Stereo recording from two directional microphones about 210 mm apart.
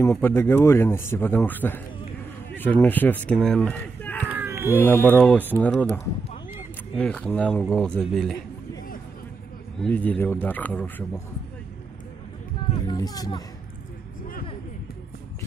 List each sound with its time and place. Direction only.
0.0 s speech: 10° left (ahead or behind)
4.3 s cat: 10° right (ahead or behind)
4.7 s speech: 10° left (ahead or behind)
7.0 s speech: 5° left (ahead or behind)
9.8 s speech: 5° left (ahead or behind)
12.8 s speech: 20° left (ahead or behind)